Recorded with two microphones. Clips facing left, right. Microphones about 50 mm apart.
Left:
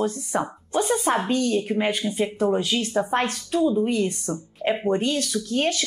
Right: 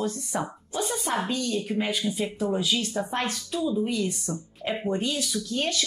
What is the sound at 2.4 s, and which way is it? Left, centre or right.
Speech, left.